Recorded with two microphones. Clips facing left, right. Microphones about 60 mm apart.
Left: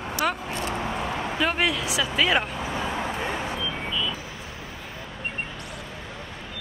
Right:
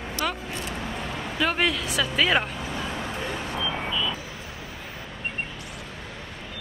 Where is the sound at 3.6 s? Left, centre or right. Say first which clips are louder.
Right 1 dB; centre.